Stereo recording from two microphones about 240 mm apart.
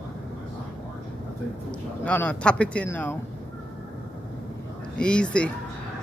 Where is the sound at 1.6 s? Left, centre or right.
Centre.